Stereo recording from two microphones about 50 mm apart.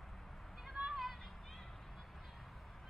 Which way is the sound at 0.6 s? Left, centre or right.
Centre.